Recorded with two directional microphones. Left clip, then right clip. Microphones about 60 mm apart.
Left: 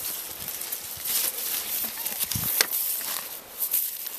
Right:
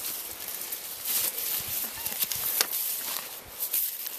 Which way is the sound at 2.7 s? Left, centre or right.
Centre.